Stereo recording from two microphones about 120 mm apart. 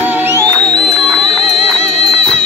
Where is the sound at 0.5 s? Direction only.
5° left (ahead or behind).